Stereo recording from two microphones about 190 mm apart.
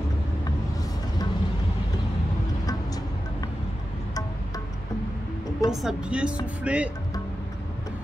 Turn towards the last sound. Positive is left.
turn(degrees=-5)  # may be behind; listen again after turning